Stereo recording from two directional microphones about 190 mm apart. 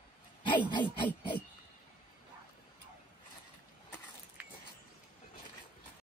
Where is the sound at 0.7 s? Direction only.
25° left (ahead or behind).